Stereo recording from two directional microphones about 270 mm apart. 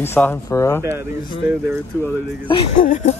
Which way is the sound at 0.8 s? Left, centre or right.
Centre.